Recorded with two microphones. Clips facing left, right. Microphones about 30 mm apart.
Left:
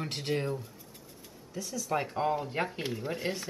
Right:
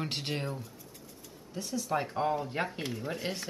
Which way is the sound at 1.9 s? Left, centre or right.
Centre.